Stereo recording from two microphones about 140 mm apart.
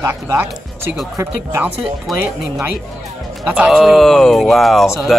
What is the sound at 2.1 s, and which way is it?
Speech, centre (ahead or behind).